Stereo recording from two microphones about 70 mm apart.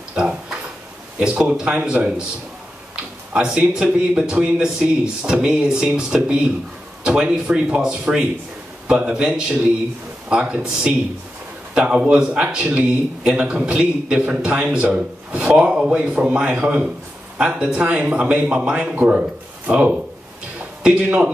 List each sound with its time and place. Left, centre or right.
0.1 s tick-tock: centre
1.2 s speech: centre
3.5 s speech: centre